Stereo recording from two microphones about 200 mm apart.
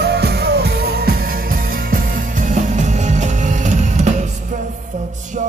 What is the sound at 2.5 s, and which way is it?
Music, 35° right (ahead or behind).